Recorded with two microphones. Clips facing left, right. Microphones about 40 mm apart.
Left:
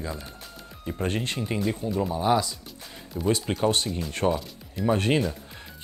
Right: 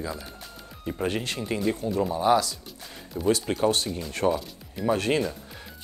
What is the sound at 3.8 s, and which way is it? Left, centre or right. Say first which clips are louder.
Speech: left 1 dB; centre.